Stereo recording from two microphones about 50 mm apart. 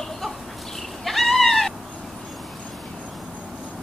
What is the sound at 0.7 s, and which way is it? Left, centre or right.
Cat, centre.